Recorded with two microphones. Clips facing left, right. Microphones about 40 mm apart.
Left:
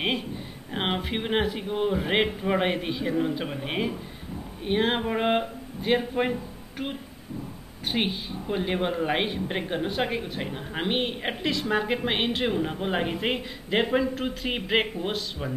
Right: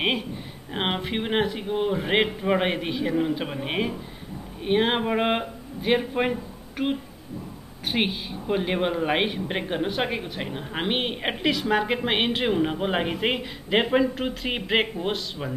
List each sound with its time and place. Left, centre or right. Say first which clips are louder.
0.7 s speech: right 1 dB; centre
7.9 s speech: right 2 dB; centre